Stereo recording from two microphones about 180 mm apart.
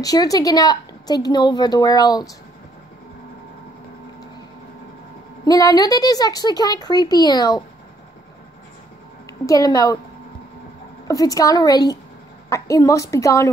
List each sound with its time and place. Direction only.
0.0 s a woman's voice: 20° left (ahead or behind)
5.4 s a woman's voice: 20° left (ahead or behind)
9.5 s a woman's voice: 20° left (ahead or behind)
11.1 s a woman's voice: 20° left (ahead or behind)